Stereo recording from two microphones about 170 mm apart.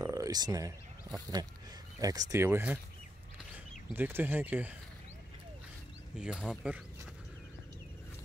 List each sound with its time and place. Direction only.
0.0 s a sound: 20° right (ahead or behind)
1.4 s speech: 25° right (ahead or behind)
3.9 s speech: 10° right (ahead or behind)
6.1 s speech: 5° right (ahead or behind)